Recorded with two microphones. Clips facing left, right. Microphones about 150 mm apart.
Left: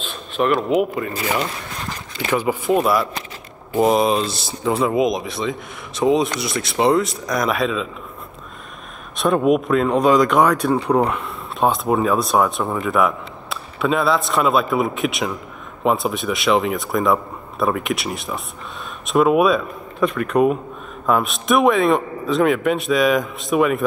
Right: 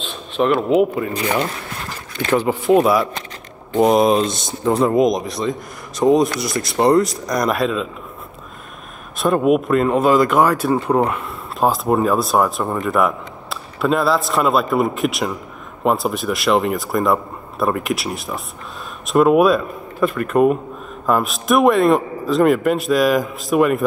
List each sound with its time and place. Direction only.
0.4 s speech: 5° right (ahead or behind)
2.2 s speech: 10° left (ahead or behind)
2.6 s speech: centre (ahead or behind)
9.2 s speech: centre (ahead or behind)